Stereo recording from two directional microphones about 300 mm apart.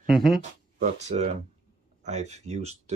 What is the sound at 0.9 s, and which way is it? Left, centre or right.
Speech, right.